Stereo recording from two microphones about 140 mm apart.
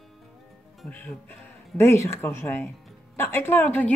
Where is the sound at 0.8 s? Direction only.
10° left (ahead or behind).